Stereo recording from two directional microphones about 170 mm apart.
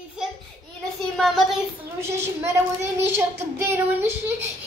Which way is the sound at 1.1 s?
Centre (ahead or behind).